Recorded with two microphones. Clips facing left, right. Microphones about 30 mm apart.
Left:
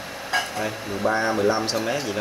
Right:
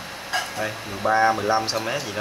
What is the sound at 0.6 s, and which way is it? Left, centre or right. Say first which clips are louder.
Speech: left 1 dB; centre.